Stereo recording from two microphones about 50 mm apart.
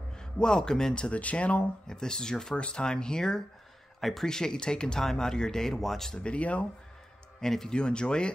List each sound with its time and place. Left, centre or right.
0.1 s speech: centre
1.9 s speech: centre
4.0 s speech: centre
4.3 s speech: centre
6.1 s speech: left
7.3 s speech: centre